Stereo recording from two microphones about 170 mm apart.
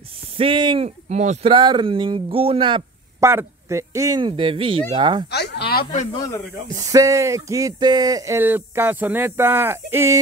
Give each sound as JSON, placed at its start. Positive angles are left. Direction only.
{"t": 0.4, "sound": "speech", "side_deg": -30}
{"t": 1.5, "sound": "speech", "side_deg": -30}
{"t": 3.2, "sound": "speech", "side_deg": -15}
{"t": 5.3, "sound": "a sound", "side_deg": 75}
{"t": 6.1, "sound": "speech", "side_deg": 20}
{"t": 6.7, "sound": "speech", "side_deg": -20}